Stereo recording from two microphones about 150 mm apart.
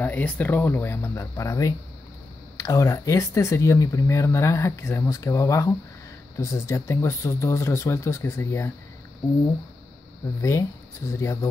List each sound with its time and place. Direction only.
0.0 s speech: 10° left (ahead or behind)
11.1 s speech: 20° left (ahead or behind)